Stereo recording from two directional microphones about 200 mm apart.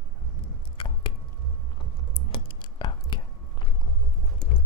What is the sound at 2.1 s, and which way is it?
Clicking, 25° left (ahead or behind).